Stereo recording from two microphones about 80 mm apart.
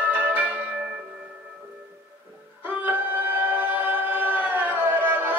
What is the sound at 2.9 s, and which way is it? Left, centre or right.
Choir, right.